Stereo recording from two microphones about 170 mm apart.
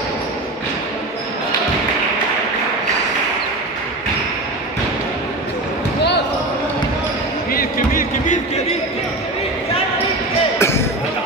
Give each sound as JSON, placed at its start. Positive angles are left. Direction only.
{"t": 7.5, "sound": "music", "side_deg": 55}
{"t": 10.6, "sound": "basketball bounce", "side_deg": 15}